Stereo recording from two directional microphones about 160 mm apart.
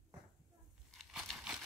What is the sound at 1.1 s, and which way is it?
Crumpling, 5° right (ahead or behind).